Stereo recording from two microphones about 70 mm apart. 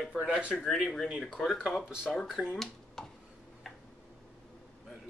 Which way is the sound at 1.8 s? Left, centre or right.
Centre.